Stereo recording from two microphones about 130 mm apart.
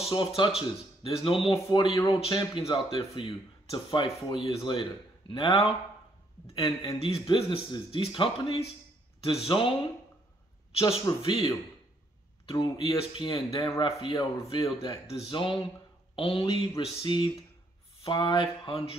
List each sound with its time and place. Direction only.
0.0 s speech: 40° left (ahead or behind)
10.8 s speech: 45° left (ahead or behind)
12.4 s speech: 35° left (ahead or behind); by 13.9 s 50° left (ahead or behind)
14.1 s speech: 25° left (ahead or behind)
15.0 s speech: 50° left (ahead or behind)